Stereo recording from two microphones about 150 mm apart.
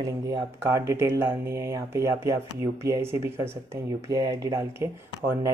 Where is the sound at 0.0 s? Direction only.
25° right (ahead or behind).